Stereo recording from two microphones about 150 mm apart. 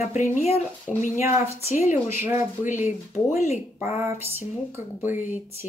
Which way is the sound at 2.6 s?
55° left (ahead or behind).